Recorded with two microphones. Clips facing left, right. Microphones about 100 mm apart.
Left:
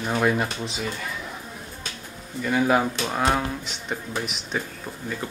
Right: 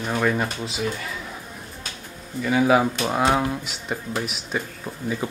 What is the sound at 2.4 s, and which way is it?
Speech, 5° right (ahead or behind).